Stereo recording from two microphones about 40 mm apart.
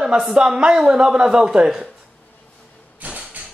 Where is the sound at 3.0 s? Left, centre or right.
Right.